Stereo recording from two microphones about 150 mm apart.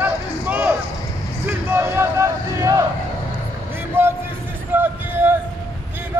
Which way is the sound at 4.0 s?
15° right (ahead or behind).